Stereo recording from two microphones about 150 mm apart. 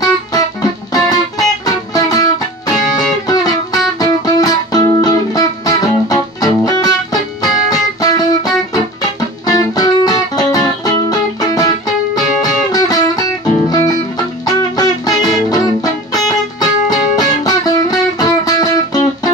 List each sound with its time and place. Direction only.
0.0 s music: 25° left (ahead or behind)